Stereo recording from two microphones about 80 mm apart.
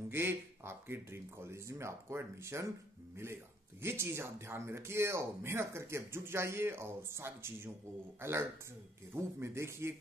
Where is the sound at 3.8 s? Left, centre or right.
Right.